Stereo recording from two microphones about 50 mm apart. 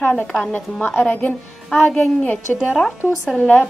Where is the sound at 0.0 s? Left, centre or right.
Left.